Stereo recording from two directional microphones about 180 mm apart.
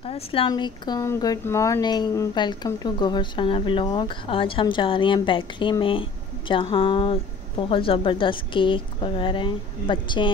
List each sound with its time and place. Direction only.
0.0 s speech: 30° left (ahead or behind)